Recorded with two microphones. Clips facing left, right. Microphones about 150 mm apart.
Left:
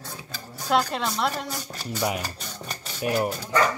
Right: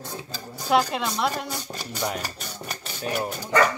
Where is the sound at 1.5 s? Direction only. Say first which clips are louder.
Right 1 dB; 15° right (ahead or behind).